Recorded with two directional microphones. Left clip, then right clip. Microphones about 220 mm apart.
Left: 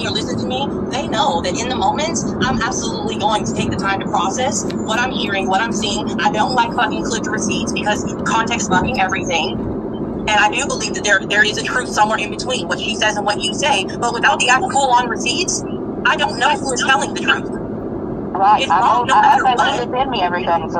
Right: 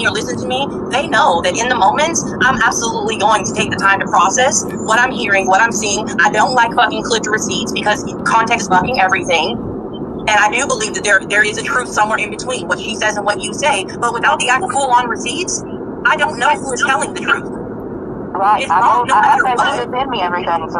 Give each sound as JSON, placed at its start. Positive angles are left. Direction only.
{"t": 0.0, "sound": "speech", "side_deg": -25}
{"t": 18.4, "sound": "speech", "side_deg": -20}